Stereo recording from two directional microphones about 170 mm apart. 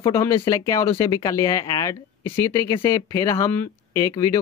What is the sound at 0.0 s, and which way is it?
Speech, 15° left (ahead or behind).